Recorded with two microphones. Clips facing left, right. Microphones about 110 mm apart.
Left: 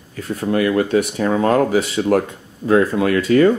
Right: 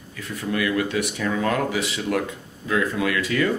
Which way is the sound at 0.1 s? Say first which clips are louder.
Left 7 dB; 40° left (ahead or behind).